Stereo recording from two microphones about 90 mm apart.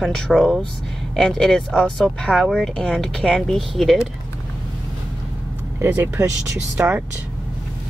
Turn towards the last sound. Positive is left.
turn(degrees=-25)  # may be behind; listen again after turning